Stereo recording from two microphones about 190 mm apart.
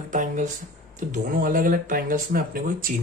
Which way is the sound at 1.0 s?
40° right (ahead or behind).